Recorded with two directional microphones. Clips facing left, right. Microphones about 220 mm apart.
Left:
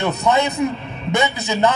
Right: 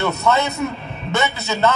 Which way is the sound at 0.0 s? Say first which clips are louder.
Left 1 dB; 15° left (ahead or behind).